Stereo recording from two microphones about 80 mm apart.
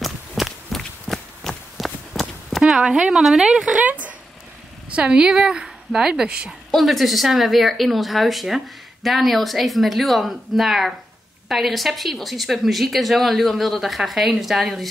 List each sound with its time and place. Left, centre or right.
0.0 s walk: centre
1.8 s clip-clop: centre
3.8 s a sound: centre
4.9 s speech: centre